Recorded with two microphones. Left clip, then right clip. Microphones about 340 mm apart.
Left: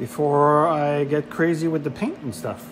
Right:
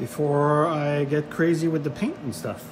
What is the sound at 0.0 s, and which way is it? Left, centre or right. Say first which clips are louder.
Speech: left 4 dB; left.